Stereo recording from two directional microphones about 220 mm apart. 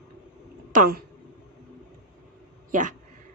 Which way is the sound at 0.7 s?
40° right (ahead or behind).